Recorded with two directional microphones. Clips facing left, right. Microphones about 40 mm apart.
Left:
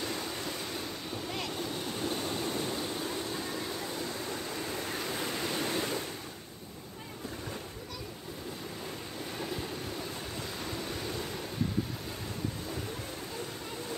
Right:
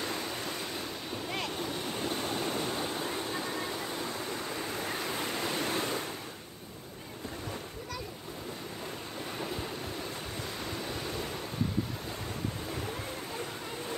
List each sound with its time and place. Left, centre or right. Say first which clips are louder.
0.0 s vehicle: right 1 dB; centre
1.3 s waves: right 2 dB; right
2.4 s a sound: right 1 dB; right
4.3 s waves: right 1 dB; centre
10.6 s waves: even; centre